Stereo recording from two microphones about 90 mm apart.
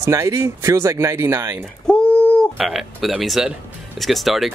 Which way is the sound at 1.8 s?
10° left (ahead or behind).